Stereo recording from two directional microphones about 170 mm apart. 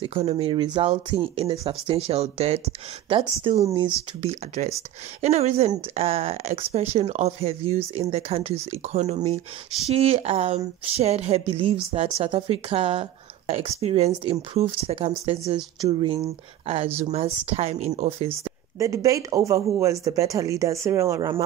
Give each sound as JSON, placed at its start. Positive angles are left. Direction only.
{"t": 0.0, "sound": "a woman's voice", "side_deg": -35}
{"t": 18.8, "sound": "speech", "side_deg": -20}